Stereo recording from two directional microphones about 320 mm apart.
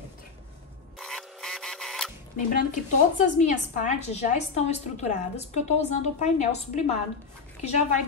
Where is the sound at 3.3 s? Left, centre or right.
Left.